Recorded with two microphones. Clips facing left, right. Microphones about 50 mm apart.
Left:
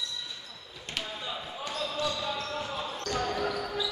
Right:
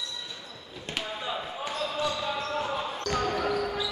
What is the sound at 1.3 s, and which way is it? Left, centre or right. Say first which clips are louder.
Basketball bounce: right 4 dB; centre.